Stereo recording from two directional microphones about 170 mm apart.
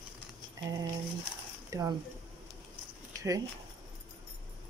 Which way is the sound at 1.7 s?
20° right (ahead or behind).